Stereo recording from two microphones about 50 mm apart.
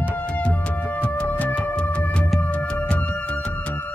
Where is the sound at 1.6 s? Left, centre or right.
Left.